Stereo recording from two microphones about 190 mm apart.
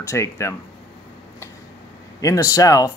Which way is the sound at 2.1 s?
15° left (ahead or behind).